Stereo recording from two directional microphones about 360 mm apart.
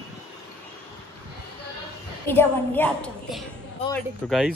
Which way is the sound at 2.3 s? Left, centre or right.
Centre.